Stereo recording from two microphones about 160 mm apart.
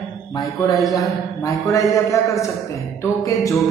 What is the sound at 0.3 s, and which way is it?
Speech, 25° left (ahead or behind).